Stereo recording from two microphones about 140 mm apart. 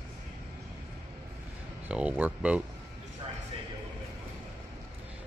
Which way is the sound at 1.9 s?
10° right (ahead or behind).